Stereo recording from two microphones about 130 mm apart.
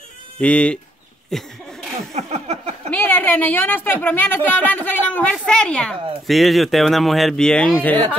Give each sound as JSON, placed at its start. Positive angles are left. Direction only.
{"t": 0.4, "sound": "a woman's voice", "side_deg": 10}
{"t": 2.1, "sound": "a sound", "side_deg": -55}
{"t": 2.9, "sound": "a woman's voice", "side_deg": 15}